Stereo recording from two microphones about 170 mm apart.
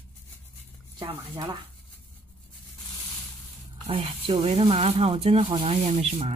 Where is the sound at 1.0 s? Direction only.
25° right (ahead or behind).